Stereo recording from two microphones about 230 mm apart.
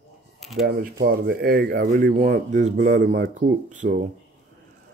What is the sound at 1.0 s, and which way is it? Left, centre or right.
Speech, right.